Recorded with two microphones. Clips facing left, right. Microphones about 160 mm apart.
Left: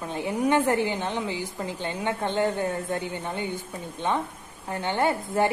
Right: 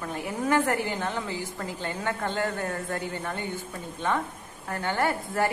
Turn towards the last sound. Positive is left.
turn(degrees=20)  # may be behind; listen again after turning